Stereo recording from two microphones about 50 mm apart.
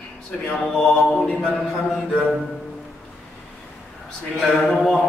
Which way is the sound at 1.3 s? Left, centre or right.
Left.